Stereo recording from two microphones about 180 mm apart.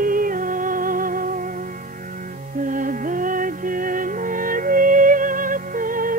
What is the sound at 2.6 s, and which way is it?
Music, 45° right (ahead or behind).